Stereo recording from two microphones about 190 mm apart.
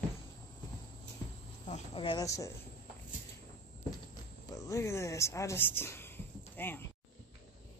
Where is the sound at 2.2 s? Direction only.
15° left (ahead or behind).